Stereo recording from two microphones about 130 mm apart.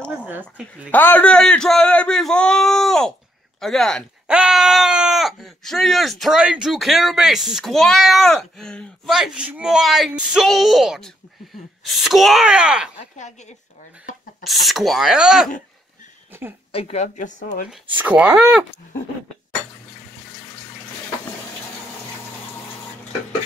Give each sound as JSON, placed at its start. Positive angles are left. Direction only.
{"t": 0.1, "sound": "speech", "side_deg": -10}
{"t": 0.9, "sound": "speech", "side_deg": 15}
{"t": 14.4, "sound": "speech", "side_deg": 0}
{"t": 16.3, "sound": "speech", "side_deg": -20}
{"t": 16.7, "sound": "speech", "side_deg": 50}
{"t": 17.6, "sound": "speech", "side_deg": -10}